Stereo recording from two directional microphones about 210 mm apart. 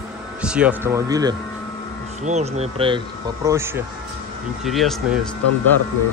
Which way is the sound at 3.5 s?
10° right (ahead or behind).